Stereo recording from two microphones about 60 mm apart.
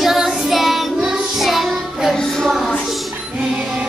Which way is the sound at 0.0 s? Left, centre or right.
Centre.